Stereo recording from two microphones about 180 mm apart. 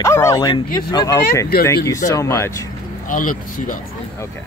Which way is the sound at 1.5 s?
60° left (ahead or behind).